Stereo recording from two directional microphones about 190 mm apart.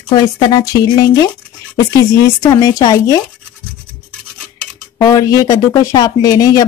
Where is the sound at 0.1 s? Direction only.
20° left (ahead or behind).